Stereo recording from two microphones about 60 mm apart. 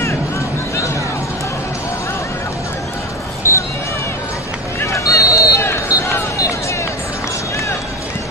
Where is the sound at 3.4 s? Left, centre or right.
Left.